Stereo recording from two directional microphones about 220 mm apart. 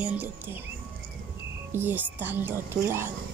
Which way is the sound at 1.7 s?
10° right (ahead or behind).